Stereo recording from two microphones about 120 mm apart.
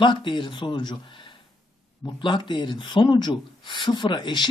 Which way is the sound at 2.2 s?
40° left (ahead or behind).